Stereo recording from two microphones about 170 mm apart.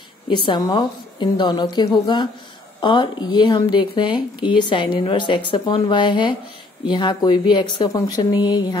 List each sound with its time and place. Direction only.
0.5 s speech: 20° left (ahead or behind)